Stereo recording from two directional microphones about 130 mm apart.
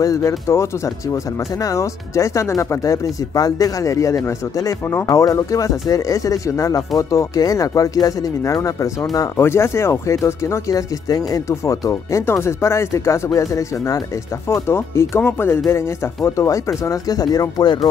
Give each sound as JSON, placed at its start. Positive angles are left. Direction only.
{"t": 0.0, "sound": "speech", "side_deg": 25}